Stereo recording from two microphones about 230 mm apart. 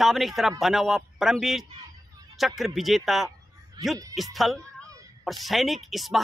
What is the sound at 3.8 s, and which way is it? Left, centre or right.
Speech, centre.